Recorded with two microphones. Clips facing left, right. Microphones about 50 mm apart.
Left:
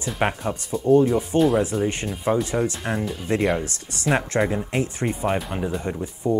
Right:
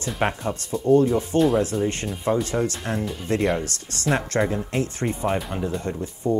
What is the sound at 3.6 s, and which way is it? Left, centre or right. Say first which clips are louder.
Speech: even; centre.